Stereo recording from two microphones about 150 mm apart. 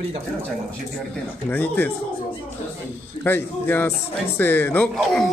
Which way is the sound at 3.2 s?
15° left (ahead or behind).